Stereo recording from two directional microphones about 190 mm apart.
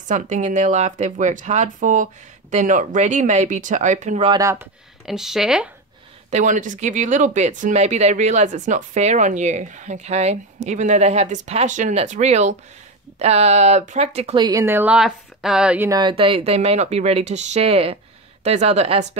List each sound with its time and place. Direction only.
0.1 s speech: 40° right (ahead or behind)
4.3 s speech: 15° right (ahead or behind)
5.0 s speech: centre (ahead or behind)
6.3 s speech: 40° right (ahead or behind); by 15.9 s 5° right (ahead or behind)
15.9 s speech: 25° right (ahead or behind)